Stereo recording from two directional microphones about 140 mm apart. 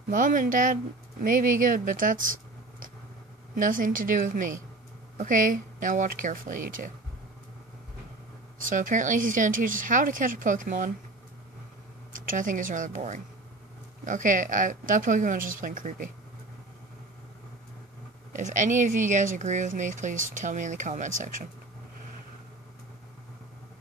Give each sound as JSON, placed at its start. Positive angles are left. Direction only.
{"t": 0.1, "sound": "speech", "side_deg": -75}
{"t": 3.5, "sound": "speech", "side_deg": -75}
{"t": 8.5, "sound": "speech", "side_deg": -70}
{"t": 12.3, "sound": "speech", "side_deg": -70}
{"t": 18.3, "sound": "speech", "side_deg": -65}